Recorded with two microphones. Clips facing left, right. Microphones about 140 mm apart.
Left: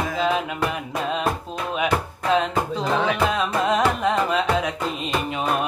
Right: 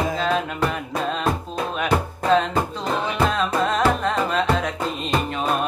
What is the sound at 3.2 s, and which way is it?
Carnatic music, 10° left (ahead or behind).